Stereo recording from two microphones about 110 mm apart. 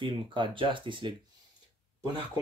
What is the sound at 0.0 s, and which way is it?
Speech, 50° right (ahead or behind).